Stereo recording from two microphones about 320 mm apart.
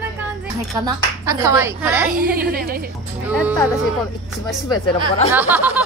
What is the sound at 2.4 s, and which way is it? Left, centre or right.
Speech, right.